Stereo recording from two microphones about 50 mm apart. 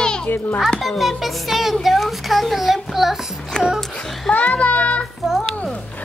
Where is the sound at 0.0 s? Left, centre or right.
Centre.